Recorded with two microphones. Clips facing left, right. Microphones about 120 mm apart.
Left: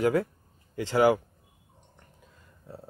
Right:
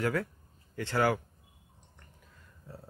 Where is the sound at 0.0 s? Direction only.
20° left (ahead or behind).